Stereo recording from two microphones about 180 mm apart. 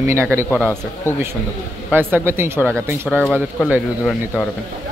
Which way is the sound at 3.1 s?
5° left (ahead or behind).